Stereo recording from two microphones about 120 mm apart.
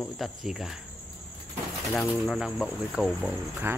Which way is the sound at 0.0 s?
5° right (ahead or behind).